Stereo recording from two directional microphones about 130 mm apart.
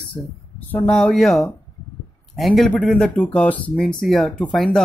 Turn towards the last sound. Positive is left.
turn(degrees=5)  # may be behind; listen again after turning